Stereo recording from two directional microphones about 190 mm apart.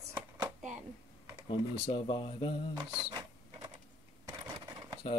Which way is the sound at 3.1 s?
20° right (ahead or behind).